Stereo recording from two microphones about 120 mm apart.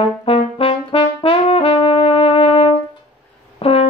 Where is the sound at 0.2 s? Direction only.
50° left (ahead or behind).